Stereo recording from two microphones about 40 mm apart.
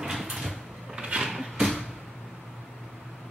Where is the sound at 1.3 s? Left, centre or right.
Centre.